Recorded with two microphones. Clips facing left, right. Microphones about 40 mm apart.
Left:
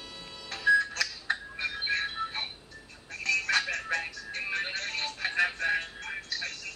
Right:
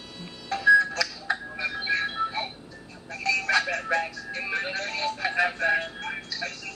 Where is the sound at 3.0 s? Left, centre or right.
Right.